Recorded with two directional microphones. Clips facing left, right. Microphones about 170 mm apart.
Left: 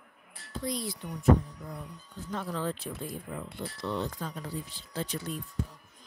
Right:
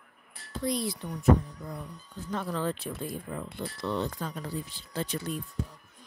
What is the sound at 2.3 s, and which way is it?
Speech, 70° right (ahead or behind).